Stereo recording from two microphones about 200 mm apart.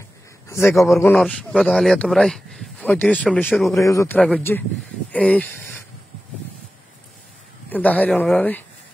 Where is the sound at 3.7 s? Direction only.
15° left (ahead or behind).